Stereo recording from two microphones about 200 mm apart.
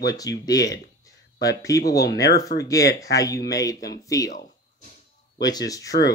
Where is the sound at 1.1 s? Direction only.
15° left (ahead or behind).